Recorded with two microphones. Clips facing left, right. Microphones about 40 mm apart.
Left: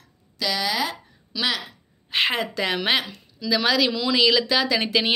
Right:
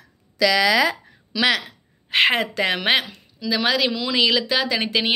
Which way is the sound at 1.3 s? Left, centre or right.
Right.